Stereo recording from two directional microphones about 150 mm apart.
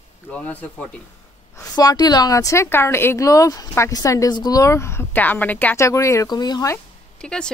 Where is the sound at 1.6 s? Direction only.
25° left (ahead or behind).